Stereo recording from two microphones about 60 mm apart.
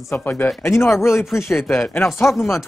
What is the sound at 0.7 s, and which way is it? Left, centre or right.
Speech, left.